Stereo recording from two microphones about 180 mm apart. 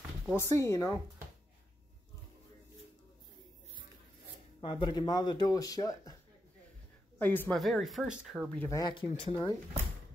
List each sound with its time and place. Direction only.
0.3 s speech: 15° left (ahead or behind)
4.6 s speech: 30° left (ahead or behind)
7.2 s speech: 10° left (ahead or behind)
8.5 s speech: 15° left (ahead or behind)
8.9 s speech: 30° left (ahead or behind)